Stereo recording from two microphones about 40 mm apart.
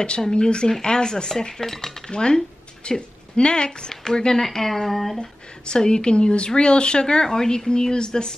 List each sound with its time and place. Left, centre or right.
0.3 s a woman's voice: left
2.0 s speech: left; by 5.2 s centre
5.2 s a woman's voice: left